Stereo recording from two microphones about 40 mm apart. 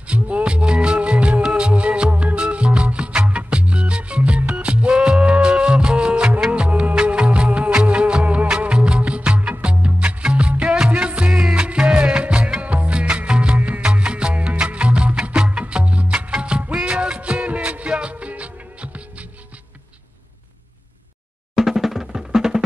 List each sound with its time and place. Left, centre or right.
0.1 s music: right
21.5 s drum: centre